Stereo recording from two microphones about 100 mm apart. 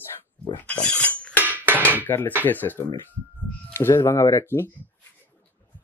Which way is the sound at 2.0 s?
20° left (ahead or behind).